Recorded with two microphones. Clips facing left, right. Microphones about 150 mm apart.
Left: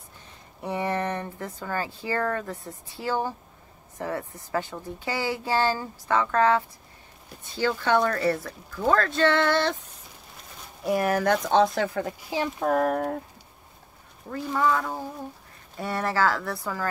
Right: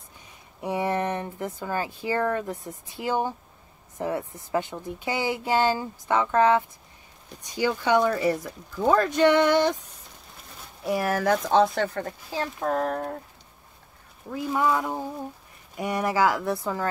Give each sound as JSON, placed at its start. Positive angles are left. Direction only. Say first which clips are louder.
{"t": 0.6, "sound": "speech", "louder": "right 2 dB", "side_deg": -15}
{"t": 10.8, "sound": "speech", "louder": "left 1 dB", "side_deg": 0}
{"t": 14.3, "sound": "speech", "louder": "even", "side_deg": -10}